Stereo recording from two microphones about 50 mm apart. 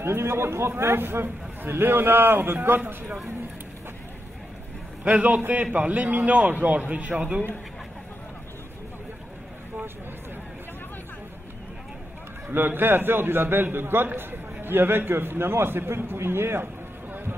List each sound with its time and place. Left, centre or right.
0.0 s a man's voice: right
5.0 s a man's voice: right
12.4 s a man's voice: right
17.1 s a sound: right